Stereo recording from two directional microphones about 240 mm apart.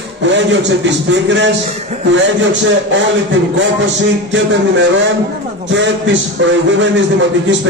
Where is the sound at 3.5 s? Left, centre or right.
Right.